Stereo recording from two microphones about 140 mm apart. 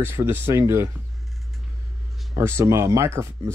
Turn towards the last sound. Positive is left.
turn(degrees=-20)  # may be behind; listen again after turning